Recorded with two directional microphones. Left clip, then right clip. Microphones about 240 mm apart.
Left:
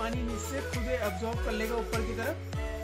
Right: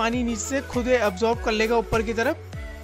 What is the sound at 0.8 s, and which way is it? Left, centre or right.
Speech, right.